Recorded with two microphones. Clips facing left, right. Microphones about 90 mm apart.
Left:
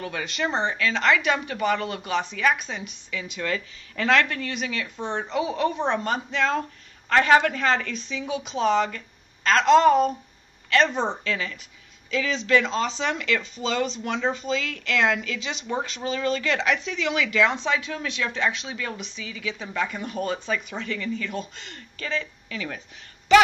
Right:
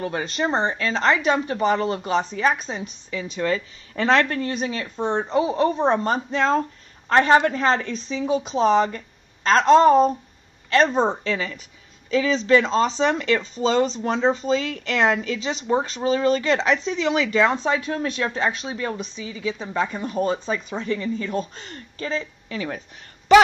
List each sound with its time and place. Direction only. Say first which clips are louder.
0.0 s speech: right 4 dB; 35° right (ahead or behind)